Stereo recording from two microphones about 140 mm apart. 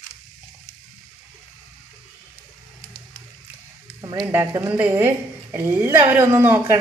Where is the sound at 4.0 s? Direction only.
30° right (ahead or behind).